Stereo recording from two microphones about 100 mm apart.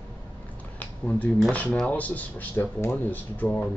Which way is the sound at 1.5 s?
15° left (ahead or behind).